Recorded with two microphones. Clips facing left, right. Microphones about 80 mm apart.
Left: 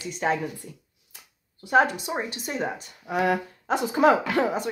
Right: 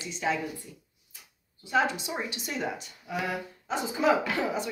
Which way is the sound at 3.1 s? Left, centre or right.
Left.